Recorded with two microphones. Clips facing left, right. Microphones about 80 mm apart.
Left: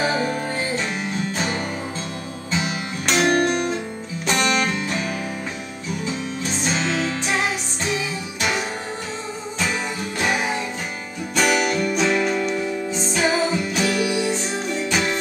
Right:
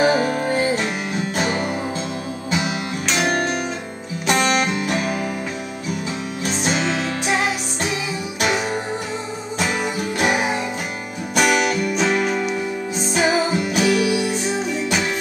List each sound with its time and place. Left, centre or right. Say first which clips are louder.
0.0 s music: right 5 dB; centre
3.1 s music: left 3 dB; centre
4.3 s music: right 2 dB; centre
6.7 s music: even; centre
9.6 s music: right 3 dB; centre